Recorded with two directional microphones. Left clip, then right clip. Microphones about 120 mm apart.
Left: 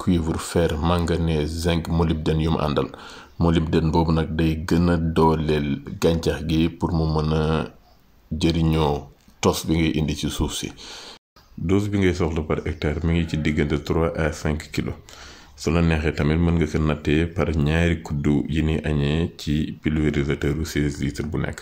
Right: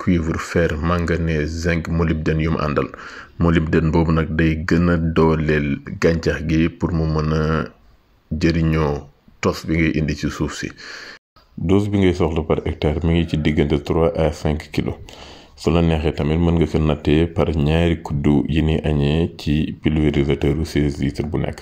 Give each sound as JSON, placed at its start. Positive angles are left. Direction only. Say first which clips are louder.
{"t": 0.0, "sound": "speech", "louder": "right 3 dB", "side_deg": -15}
{"t": 3.3, "sound": "speech", "louder": "right 3 dB", "side_deg": -25}
{"t": 11.6, "sound": "speech", "louder": "right 4 dB", "side_deg": -30}
{"t": 15.9, "sound": "speech", "louder": "right 2 dB", "side_deg": -30}